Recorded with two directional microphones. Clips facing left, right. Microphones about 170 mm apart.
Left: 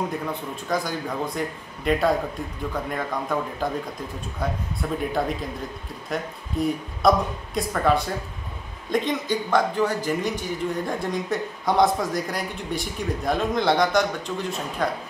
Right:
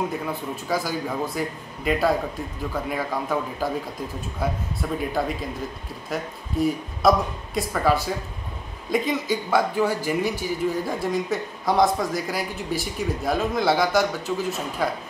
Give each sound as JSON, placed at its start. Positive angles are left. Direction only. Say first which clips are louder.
{"t": 0.2, "sound": "speech", "louder": "right 1 dB", "side_deg": -5}
{"t": 4.8, "sound": "speech", "louder": "even", "side_deg": -5}
{"t": 6.0, "sound": "speech", "louder": "even", "side_deg": 0}